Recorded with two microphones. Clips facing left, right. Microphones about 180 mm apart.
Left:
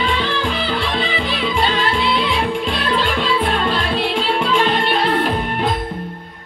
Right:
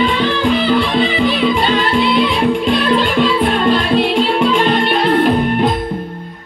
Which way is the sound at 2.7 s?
55° right (ahead or behind).